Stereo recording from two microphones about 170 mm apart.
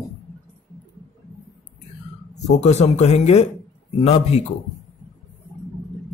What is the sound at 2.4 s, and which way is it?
A man's voice, 40° left (ahead or behind).